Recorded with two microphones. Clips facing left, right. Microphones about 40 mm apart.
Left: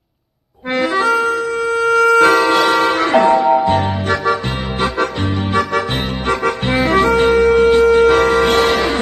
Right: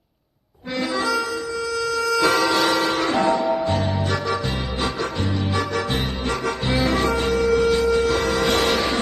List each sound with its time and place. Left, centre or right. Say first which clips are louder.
0.7 s music: left 8 dB; left
5.5 s music: left 9 dB; left